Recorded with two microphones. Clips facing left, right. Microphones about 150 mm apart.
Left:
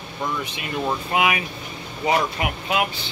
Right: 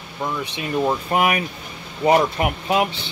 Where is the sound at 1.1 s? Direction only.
45° right (ahead or behind).